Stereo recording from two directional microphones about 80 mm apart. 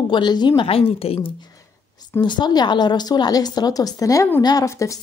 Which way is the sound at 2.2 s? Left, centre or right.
Left.